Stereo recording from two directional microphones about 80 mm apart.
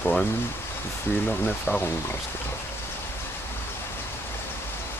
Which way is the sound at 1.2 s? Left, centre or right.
Centre.